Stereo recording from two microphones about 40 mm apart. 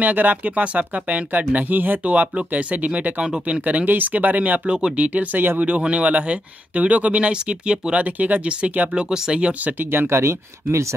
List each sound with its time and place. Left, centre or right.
0.0 s speech: right
2.0 s speech: right
8.0 s speech: right
8.5 s speech: right
9.8 s speech: right